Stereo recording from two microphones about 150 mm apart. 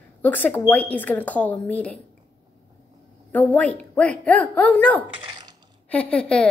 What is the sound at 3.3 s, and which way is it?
Speech, 10° left (ahead or behind).